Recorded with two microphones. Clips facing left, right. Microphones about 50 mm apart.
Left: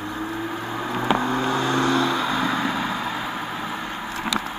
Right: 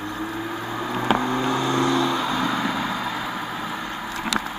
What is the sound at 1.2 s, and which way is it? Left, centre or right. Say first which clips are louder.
Vehicle: even; left.